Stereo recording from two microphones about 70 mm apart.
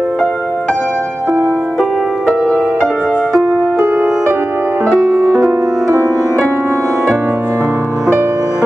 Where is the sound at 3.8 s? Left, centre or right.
Right.